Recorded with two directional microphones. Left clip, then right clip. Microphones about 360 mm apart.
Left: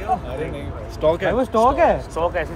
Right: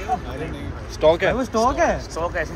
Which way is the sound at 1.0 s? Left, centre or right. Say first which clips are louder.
Right 2 dB; centre.